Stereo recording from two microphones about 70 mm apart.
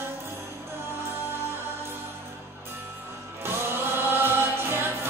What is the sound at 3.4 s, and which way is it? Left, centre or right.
Music, right.